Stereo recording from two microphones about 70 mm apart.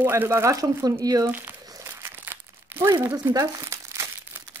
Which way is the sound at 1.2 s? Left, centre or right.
Right.